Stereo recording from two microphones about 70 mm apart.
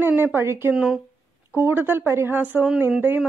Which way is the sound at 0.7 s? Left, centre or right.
Centre.